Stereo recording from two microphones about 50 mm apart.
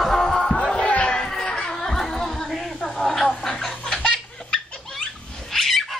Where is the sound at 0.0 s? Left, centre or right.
Centre.